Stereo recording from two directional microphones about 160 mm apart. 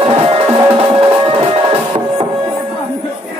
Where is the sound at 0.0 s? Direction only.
35° right (ahead or behind).